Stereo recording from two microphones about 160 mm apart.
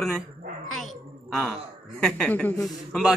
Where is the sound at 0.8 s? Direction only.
Centre (ahead or behind).